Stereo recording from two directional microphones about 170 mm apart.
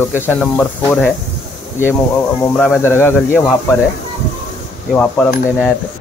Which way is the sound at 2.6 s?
10° left (ahead or behind).